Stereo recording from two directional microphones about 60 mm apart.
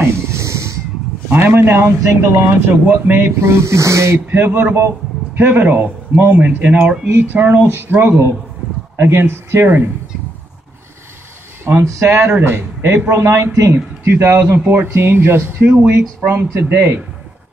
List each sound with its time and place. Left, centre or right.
0.0 s a sound: right
1.3 s speech: right
3.3 s a man's voice: right
4.4 s speech: right
7.1 s a man's voice: right
11.8 s speech: right
12.3 s a man's voice: right
14.6 s speech: right